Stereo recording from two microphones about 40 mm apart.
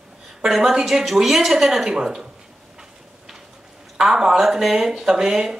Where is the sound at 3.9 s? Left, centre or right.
Centre.